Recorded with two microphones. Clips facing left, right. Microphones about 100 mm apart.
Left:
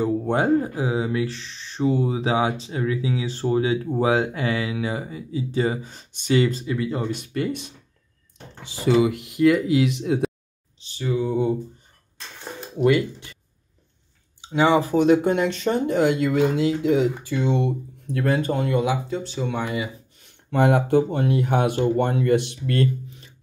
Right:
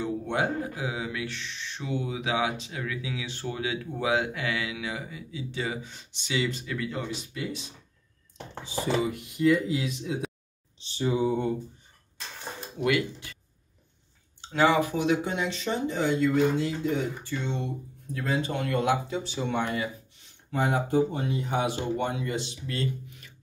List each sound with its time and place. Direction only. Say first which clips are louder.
0.0 s speech: left 7 dB; 40° left (ahead or behind)
6.6 s speech: left 7 dB; 25° left (ahead or behind)
7.1 s speech: left 8 dB; 55° left (ahead or behind)
8.8 s speech: left 9 dB; 80° left
10.8 s a sound: left 2 dB; 25° right (ahead or behind)
12.7 s speech: left 7 dB; 25° left (ahead or behind)
14.4 s speech: left 4 dB; 15° left (ahead or behind)
14.8 s speech: left 8 dB; 40° left (ahead or behind); by 18.5 s 60° left (ahead or behind)
18.7 s speech: left 1 dB; 10° left (ahead or behind)
19.0 s speech: left 4 dB; centre (ahead or behind)
20.5 s speech: left 7 dB; 70° left (ahead or behind)
23.0 s a sound: left 5 dB; 25° left (ahead or behind)